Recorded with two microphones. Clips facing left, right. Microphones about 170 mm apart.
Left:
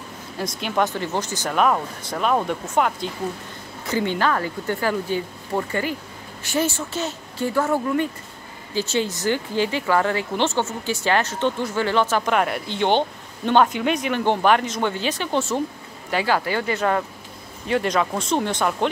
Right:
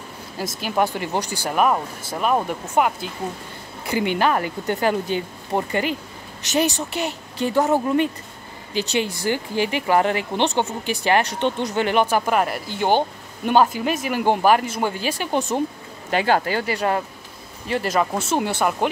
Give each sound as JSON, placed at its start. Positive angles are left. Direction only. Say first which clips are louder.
{"t": 0.6, "sound": "speech", "louder": "right 1 dB", "side_deg": -5}
{"t": 14.0, "sound": "speech", "louder": "right 3 dB", "side_deg": -10}
{"t": 16.2, "sound": "speech", "louder": "right 2 dB", "side_deg": -45}
{"t": 17.6, "sound": "speech", "louder": "even", "side_deg": -5}